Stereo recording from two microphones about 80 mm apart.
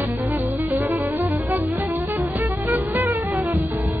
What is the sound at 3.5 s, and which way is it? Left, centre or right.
Music, right.